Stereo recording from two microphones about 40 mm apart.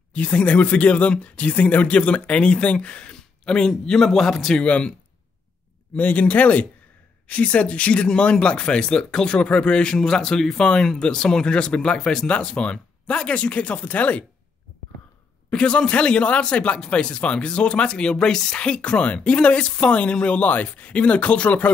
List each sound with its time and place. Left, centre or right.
0.1 s speech: left; by 4.6 s centre
4.6 s speech: left
5.9 s speech: left; by 12.3 s centre
12.3 s speech: left
15.5 s speech: left
18.7 s speech: left
20.4 s speech: left